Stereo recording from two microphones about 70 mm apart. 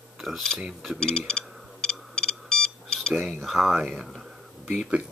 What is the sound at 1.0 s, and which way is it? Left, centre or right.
Speech, centre.